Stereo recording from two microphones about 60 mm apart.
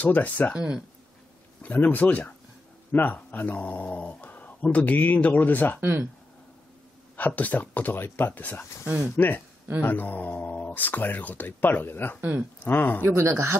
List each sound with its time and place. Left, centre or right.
0.0 s speech: left
0.6 s speech: centre
1.6 s speech: left
5.8 s speech: right
7.2 s speech: left
13.3 s speech: right